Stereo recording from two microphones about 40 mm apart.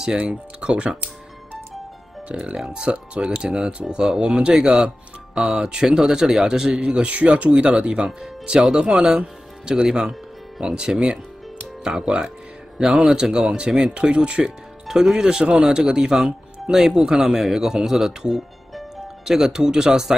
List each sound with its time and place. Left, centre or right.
0.2 s speech: right
2.2 s speech: right
6.8 s speech: right
8.2 s speech: centre
9.8 s speech: centre